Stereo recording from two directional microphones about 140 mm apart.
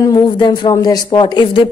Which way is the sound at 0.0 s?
30° left (ahead or behind).